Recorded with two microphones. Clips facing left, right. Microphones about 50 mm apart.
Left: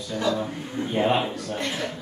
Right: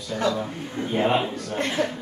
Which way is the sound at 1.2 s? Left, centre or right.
Centre.